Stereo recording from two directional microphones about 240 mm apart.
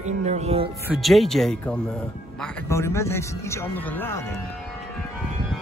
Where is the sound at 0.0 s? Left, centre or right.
Right.